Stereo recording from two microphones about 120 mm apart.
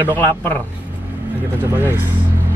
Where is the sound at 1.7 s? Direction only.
20° right (ahead or behind).